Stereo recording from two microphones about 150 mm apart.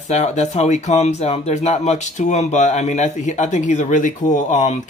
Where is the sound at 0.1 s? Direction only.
50° left (ahead or behind).